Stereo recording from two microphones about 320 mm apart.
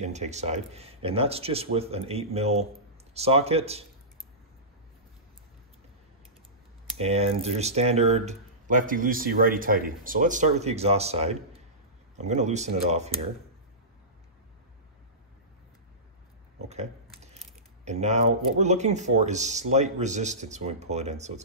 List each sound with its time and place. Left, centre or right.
0.0 s speech: right
7.0 s speech: centre
16.6 s a sound: centre
17.8 s speech: right